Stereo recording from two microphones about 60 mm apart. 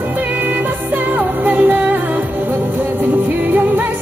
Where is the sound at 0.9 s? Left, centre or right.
Right.